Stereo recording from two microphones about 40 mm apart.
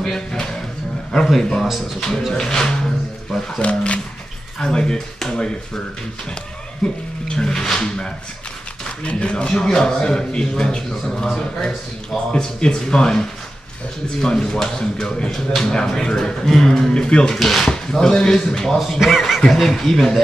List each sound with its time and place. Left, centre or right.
0.3 s a sound: centre
1.1 s speech: centre
3.6 s speech: left
4.6 s speech: centre
6.8 s speech: left
9.5 s speech: centre
10.9 s speech: centre
12.3 s speech: left
15.3 s speech: centre
19.0 s speech: centre